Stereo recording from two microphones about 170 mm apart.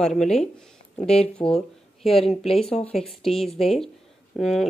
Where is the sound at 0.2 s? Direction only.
5° left (ahead or behind).